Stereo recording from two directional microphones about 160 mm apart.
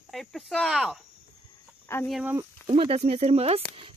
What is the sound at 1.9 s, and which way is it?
Speech, 15° left (ahead or behind).